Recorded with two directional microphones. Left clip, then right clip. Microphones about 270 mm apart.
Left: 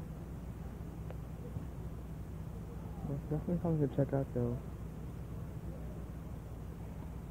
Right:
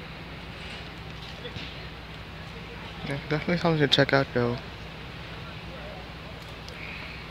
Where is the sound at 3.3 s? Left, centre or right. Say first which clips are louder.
Right 12 dB; right.